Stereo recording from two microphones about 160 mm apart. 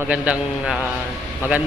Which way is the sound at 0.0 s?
10° right (ahead or behind).